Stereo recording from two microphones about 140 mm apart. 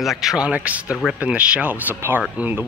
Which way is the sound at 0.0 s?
Centre (ahead or behind).